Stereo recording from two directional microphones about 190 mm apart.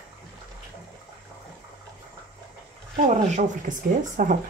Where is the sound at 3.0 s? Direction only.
45° right (ahead or behind).